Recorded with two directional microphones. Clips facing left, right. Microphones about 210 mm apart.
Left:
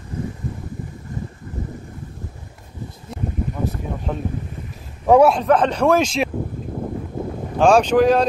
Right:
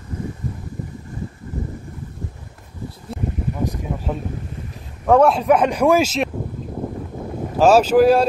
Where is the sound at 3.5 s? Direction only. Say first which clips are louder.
Right 1 dB; 10° right (ahead or behind).